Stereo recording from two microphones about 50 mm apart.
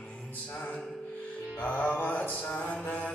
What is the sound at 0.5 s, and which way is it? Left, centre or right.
Music, left.